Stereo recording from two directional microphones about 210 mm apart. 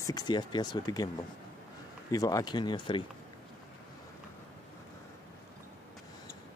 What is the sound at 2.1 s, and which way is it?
Speech, 15° left (ahead or behind).